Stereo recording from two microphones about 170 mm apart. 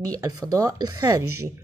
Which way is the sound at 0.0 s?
20° right (ahead or behind).